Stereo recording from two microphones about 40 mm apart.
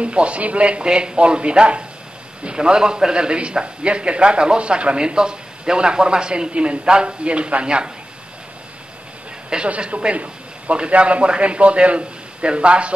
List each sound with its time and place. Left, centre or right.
0.0 s a man's voice: right
9.7 s a man's voice: right